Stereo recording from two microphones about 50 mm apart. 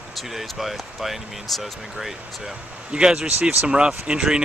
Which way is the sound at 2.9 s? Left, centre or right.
Centre.